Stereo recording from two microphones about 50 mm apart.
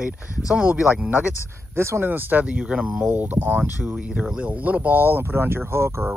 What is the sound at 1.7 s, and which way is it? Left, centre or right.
Speech, right.